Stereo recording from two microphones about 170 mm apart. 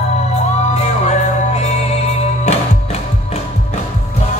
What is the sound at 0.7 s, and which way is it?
Music, 40° left (ahead or behind).